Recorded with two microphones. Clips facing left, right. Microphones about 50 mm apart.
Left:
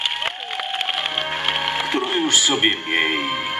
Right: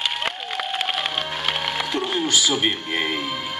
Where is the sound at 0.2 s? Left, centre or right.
Centre; by 2.2 s left.